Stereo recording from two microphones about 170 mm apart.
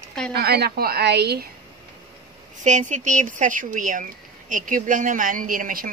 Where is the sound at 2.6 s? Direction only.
45° right (ahead or behind).